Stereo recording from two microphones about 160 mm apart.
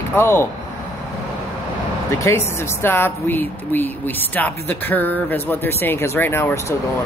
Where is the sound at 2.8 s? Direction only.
15° left (ahead or behind).